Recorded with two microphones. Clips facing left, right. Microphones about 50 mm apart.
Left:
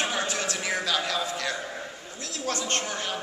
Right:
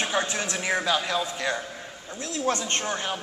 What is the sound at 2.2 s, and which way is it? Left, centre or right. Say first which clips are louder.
Speech: right 4 dB; right.